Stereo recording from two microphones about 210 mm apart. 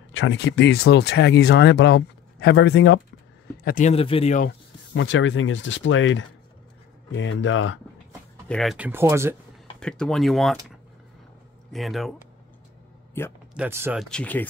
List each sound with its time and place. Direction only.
0.1 s speech: 65° left (ahead or behind)
3.6 s speech: 35° left (ahead or behind)
4.9 s speech: 65° left (ahead or behind)
8.5 s speech: centre (ahead or behind)
9.8 s speech: 5° left (ahead or behind)
11.7 s speech: centre (ahead or behind)
13.2 s speech: 10° left (ahead or behind)
13.6 s speech: 10° right (ahead or behind)
14.0 s speech: 5° left (ahead or behind)